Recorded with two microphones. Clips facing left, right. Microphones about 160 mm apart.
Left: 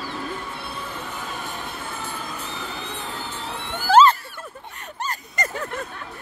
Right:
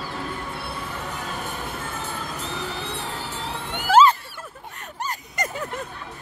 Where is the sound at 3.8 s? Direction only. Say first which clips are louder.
Left 1 dB; 5° right (ahead or behind).